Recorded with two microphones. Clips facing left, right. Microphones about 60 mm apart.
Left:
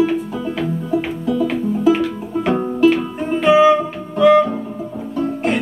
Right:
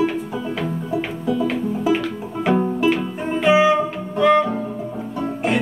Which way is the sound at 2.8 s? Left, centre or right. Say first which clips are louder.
Left 5 dB; centre.